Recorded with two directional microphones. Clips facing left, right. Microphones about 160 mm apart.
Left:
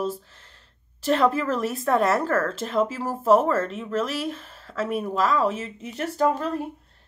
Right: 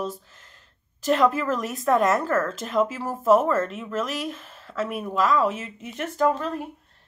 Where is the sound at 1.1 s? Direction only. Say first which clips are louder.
Even; 35° left (ahead or behind).